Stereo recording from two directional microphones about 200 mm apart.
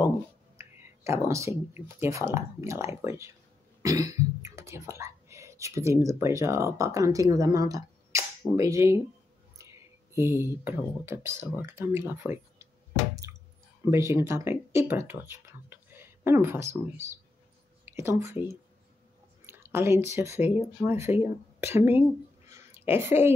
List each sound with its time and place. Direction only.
0.6 s speech: 15° right (ahead or behind)
10.1 s speech: 15° right (ahead or behind)
13.8 s speech: 15° right (ahead or behind)
22.5 s a sound: 10° right (ahead or behind)